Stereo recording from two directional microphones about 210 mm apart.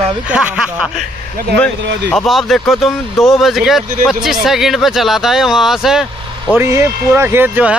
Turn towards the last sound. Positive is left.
turn(degrees=-10)  # may be behind; listen again after turning